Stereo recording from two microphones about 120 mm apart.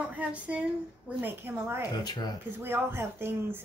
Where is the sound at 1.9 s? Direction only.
35° left (ahead or behind).